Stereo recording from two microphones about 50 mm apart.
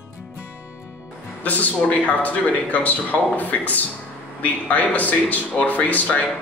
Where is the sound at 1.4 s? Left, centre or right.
Left.